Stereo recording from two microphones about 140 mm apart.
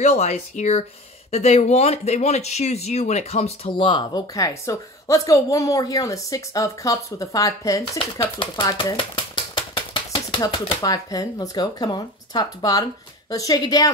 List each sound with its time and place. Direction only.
0.0 s speech: 50° left (ahead or behind); by 8.9 s 25° left (ahead or behind)
8.9 s typewriter: 40° left (ahead or behind)
10.5 s speech: 30° left (ahead or behind)